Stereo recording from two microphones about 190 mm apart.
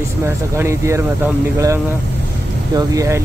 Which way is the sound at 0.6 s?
15° right (ahead or behind).